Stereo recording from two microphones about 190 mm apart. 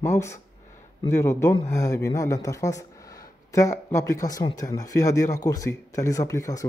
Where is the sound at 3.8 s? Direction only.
15° left (ahead or behind).